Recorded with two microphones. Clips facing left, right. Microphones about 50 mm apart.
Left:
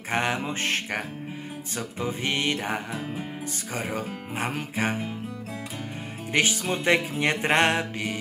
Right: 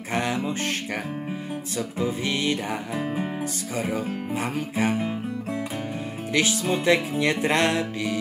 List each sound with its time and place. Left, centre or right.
0.1 s music: left
1.8 s music: left
2.9 s music: right
4.4 s music: left
6.3 s music: left